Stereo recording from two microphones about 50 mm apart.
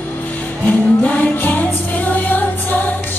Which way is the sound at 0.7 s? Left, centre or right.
Left.